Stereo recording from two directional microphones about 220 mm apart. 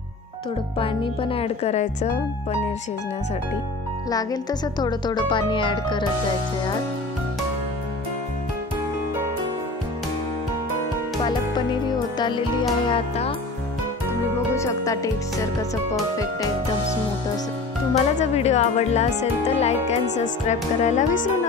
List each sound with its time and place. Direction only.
0.7 s speech: 25° left (ahead or behind)
4.1 s speech: 15° left (ahead or behind)
12.2 s speech: 20° left (ahead or behind)
14.5 s speech: 10° left (ahead or behind)
17.9 s speech: 30° left (ahead or behind)